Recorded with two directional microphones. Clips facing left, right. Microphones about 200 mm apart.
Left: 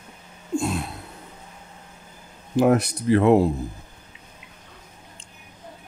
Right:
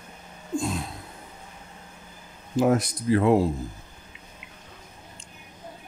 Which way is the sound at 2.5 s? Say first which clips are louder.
Left 3 dB; 65° left (ahead or behind).